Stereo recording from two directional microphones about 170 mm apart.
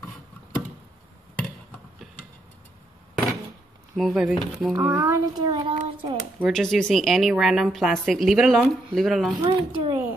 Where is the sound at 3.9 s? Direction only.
5° right (ahead or behind); by 6.2 s 30° right (ahead or behind).